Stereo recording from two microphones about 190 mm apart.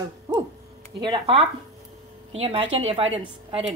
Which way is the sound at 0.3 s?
20° right (ahead or behind).